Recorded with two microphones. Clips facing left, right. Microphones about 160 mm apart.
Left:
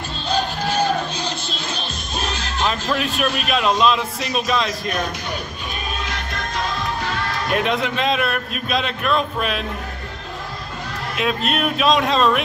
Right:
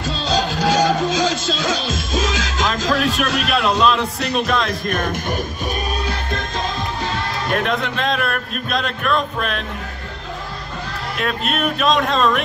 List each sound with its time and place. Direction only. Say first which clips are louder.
0.3 s music: right 3 dB; 90° right
3.3 s a man's voice: right 1 dB; 90° right
3.6 s a man's voice: even; centre (ahead or behind)
4.6 s speech: right 2 dB; 50° right (ahead or behind)
7.5 s a man's voice: left 1 dB; centre (ahead or behind)
11.1 s a man's voice: left 1 dB; centre (ahead or behind)